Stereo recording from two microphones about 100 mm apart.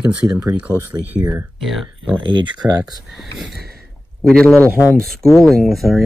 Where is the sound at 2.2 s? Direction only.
50° right (ahead or behind).